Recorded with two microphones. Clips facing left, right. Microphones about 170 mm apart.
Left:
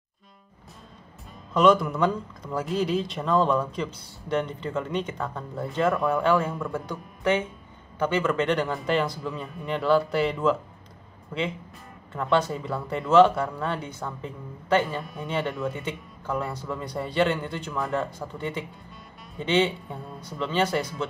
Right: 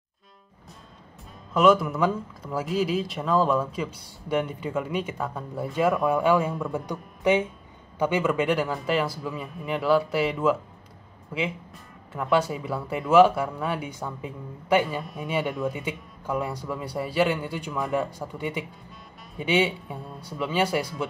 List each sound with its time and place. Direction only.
1.5 s a man's voice: 5° right (ahead or behind)